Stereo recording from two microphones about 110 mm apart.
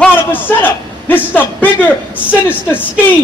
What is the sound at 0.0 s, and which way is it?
A man's voice, 15° left (ahead or behind).